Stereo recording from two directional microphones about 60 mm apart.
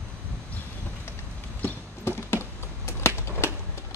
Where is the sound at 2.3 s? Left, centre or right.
Left.